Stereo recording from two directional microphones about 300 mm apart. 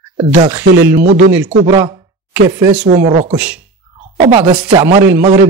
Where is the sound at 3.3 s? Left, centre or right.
Centre.